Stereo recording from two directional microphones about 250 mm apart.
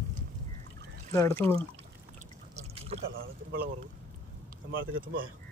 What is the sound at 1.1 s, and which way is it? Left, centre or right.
Speech, centre.